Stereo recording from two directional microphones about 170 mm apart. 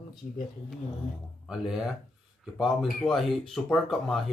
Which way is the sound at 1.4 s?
5° right (ahead or behind).